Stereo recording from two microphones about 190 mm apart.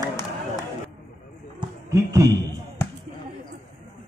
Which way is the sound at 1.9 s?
15° right (ahead or behind).